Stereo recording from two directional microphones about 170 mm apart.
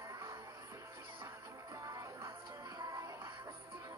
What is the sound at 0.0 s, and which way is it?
Music, 15° right (ahead or behind).